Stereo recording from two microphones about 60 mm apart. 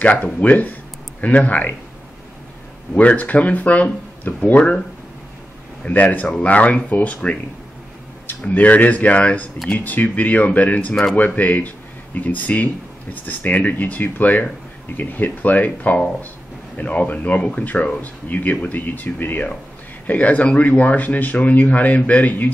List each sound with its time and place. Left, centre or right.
0.0 s speech: left
2.9 s speech: left
5.9 s speech: left
8.4 s speech: left